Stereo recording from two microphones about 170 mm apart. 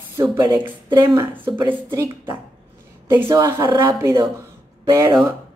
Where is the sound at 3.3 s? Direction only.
20° right (ahead or behind).